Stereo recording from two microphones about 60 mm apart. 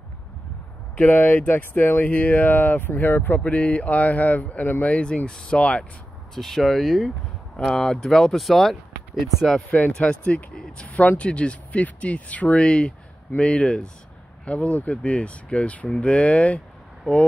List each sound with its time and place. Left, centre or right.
0.9 s speech: left
6.3 s speech: centre
9.7 s speech: left
10.9 s speech: left